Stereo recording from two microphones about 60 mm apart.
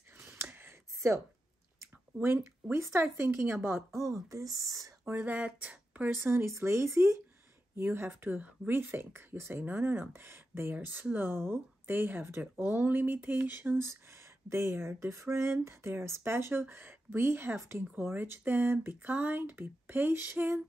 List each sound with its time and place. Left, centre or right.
0.2 s gasp: right
0.9 s a sound: right
2.7 s speech: right
4.1 s speech: right
5.0 s speech: right
5.3 s speech: right
6.0 s speech: right
13.8 s speech: right
17.9 s speech: right